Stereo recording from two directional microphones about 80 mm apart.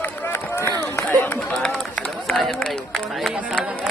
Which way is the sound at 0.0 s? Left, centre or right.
Left.